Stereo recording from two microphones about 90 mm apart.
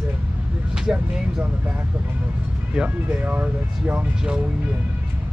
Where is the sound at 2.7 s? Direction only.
10° right (ahead or behind).